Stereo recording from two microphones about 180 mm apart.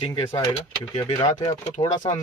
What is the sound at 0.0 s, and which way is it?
Speech, 30° left (ahead or behind).